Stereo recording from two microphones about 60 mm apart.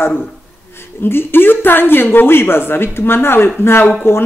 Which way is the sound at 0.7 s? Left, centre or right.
Left.